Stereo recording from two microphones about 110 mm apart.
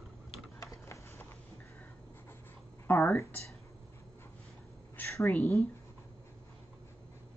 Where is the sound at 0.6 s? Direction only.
25° left (ahead or behind).